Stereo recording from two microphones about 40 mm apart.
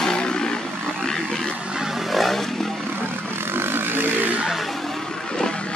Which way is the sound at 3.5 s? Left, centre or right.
Right.